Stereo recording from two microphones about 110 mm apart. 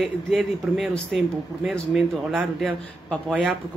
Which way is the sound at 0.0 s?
Centre (ahead or behind).